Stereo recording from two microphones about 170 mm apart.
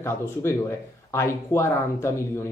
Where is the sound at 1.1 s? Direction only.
15° left (ahead or behind).